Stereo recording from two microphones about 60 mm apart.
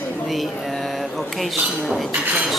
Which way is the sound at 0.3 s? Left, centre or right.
Centre.